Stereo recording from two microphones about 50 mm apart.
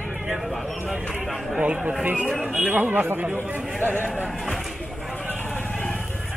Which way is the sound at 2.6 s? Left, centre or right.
Right.